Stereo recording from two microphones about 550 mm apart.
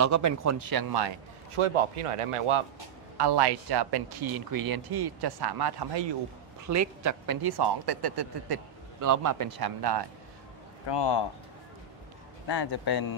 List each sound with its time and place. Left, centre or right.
0.0 s speech: right
1.6 s a man's voice: right
3.2 s speech: right
6.6 s speech: right
9.0 s speech: right
10.9 s speech: left
12.4 s a man's voice: left